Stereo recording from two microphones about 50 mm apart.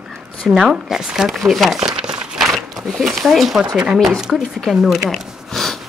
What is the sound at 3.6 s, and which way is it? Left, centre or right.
Speech, centre.